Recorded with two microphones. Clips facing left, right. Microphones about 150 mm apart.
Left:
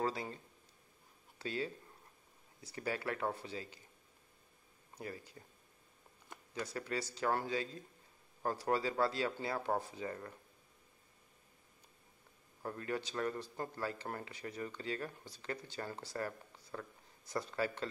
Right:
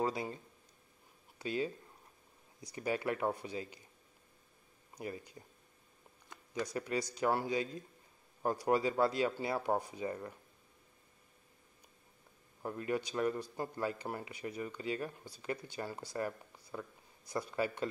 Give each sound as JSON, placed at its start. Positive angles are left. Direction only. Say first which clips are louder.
{"t": 0.0, "sound": "a sound", "louder": "right 2 dB", "side_deg": -15}
{"t": 1.4, "sound": "speech", "louder": "right 3 dB", "side_deg": -15}
{"t": 4.9, "sound": "speech", "louder": "right 3 dB", "side_deg": -15}
{"t": 6.6, "sound": "speech", "louder": "right 4 dB", "side_deg": -15}
{"t": 12.6, "sound": "speech", "louder": "right 3 dB", "side_deg": -15}